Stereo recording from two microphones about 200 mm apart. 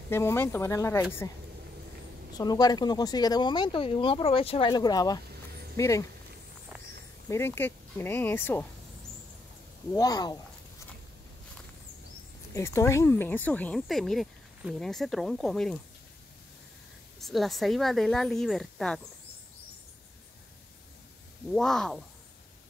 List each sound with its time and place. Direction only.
0.1 s speech: 10° left (ahead or behind)
2.3 s speech: 20° left (ahead or behind)
7.2 s speech: 10° left (ahead or behind)
9.9 s speech: 20° left (ahead or behind)
12.5 s speech: 15° left (ahead or behind)
17.2 s speech: centre (ahead or behind)
21.5 s speech: centre (ahead or behind)